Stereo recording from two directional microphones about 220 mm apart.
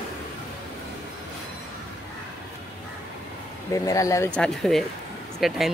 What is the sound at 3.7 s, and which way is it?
Speech, 15° left (ahead or behind).